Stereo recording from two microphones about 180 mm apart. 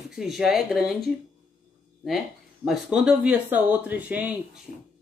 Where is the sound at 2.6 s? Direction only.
5° right (ahead or behind).